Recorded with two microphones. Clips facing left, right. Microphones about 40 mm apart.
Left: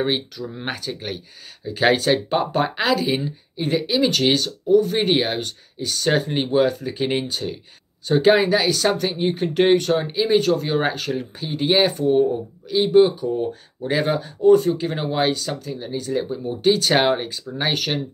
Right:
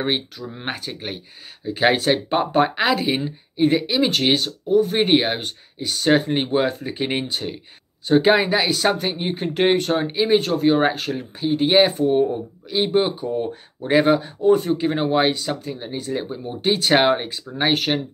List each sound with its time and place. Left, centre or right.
0.5 s speech: centre
2.8 s speech: right
8.1 s speech: centre